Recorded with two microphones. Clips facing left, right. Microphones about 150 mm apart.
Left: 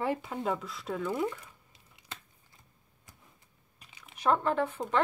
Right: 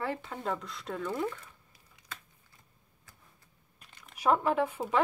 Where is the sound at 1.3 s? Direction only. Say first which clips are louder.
Left 1 dB; 25° left (ahead or behind).